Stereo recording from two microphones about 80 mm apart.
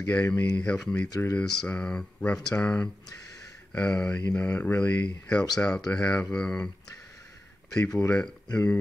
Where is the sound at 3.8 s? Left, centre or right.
Centre.